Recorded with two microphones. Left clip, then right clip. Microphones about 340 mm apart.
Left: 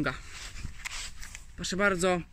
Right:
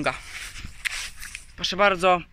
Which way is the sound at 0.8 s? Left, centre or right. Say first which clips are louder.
Right 10 dB; centre.